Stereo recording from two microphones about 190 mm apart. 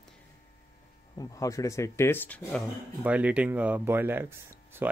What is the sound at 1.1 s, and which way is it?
Speech, 15° left (ahead or behind).